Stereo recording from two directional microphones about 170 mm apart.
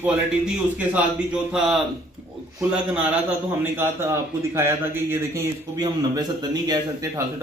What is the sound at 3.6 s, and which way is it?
Speech, 15° right (ahead or behind).